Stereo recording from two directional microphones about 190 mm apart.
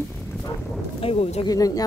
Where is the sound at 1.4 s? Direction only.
20° left (ahead or behind).